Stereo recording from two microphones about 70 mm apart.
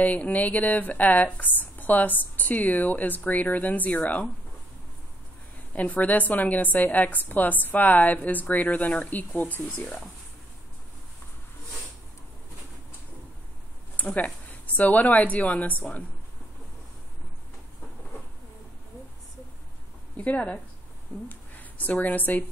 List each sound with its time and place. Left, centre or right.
0.0 s a woman's voice: left
5.8 s a woman's voice: left
13.9 s a woman's voice: left
20.2 s a woman's voice: centre